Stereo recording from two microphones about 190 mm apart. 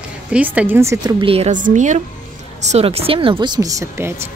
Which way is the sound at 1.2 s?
30° right (ahead or behind).